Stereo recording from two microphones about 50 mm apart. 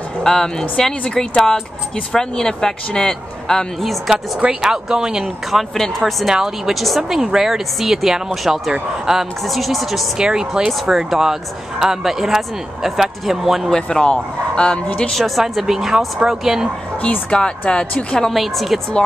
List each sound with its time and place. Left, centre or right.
0.2 s speech: centre
4.6 s speech: centre
5.5 s speech: centre
6.2 s speech: centre
7.0 s speech: centre
10.1 s speech: centre
13.7 s a woman's voice: centre
15.1 s speech: centre
15.4 s speech: centre
17.0 s speech: left
18.3 s speech: centre